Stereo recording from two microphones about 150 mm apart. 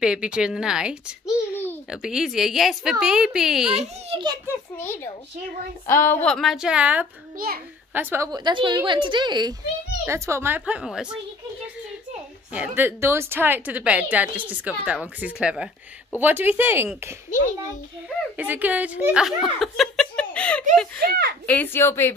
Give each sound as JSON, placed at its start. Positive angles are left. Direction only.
{"t": 0.0, "sound": "a woman's voice", "side_deg": -5}
{"t": 3.7, "sound": "a child's voice", "side_deg": -40}
{"t": 4.7, "sound": "speech", "side_deg": 15}
{"t": 6.2, "sound": "a woman's voice", "side_deg": 0}
{"t": 7.3, "sound": "a child's voice", "side_deg": -80}
{"t": 7.9, "sound": "speech", "side_deg": -15}
{"t": 8.3, "sound": "a woman's voice", "side_deg": -30}
{"t": 10.0, "sound": "speech", "side_deg": -20}
{"t": 12.5, "sound": "speech", "side_deg": -15}
{"t": 18.4, "sound": "speech", "side_deg": -10}
{"t": 19.6, "sound": "laughter", "side_deg": 0}
{"t": 20.7, "sound": "speech", "side_deg": 5}
{"t": 21.0, "sound": "speech", "side_deg": -90}
{"t": 21.5, "sound": "speech", "side_deg": 10}